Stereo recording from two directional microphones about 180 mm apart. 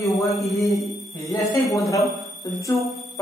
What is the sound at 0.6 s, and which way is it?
Mantra, centre (ahead or behind).